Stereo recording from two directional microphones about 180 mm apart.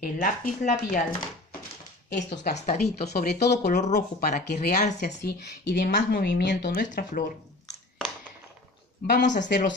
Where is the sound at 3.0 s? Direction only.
65° left (ahead or behind).